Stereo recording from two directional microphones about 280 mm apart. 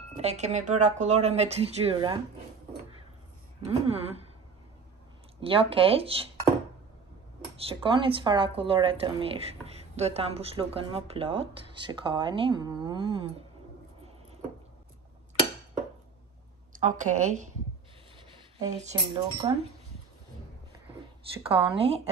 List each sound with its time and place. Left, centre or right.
0.2 s speech: right
3.6 s speech: right
5.4 s speech: centre
7.5 s speech: centre
16.7 s speech: right
18.8 s speech: centre
21.4 s speech: centre